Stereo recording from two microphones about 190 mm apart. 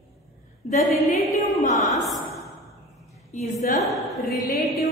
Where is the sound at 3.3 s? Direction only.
40° left (ahead or behind).